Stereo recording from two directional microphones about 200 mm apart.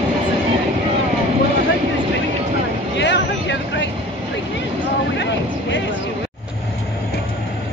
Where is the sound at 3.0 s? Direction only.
65° left (ahead or behind).